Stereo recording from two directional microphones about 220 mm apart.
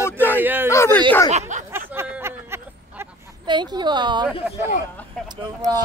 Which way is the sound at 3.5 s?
20° right (ahead or behind).